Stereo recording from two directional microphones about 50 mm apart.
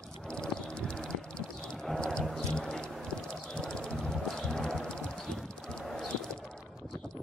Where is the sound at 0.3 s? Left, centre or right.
Centre.